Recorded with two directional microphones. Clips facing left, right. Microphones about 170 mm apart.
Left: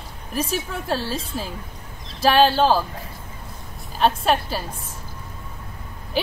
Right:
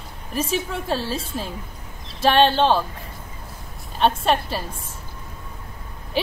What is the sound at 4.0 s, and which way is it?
Speech, centre (ahead or behind).